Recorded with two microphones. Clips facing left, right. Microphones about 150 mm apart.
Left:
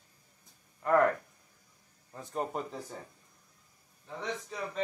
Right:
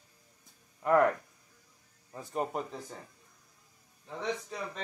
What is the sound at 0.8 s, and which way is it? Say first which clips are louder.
Speech: right 1 dB; centre (ahead or behind).